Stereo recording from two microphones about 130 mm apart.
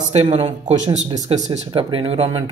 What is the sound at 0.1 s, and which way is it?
Speech, 55° right (ahead or behind).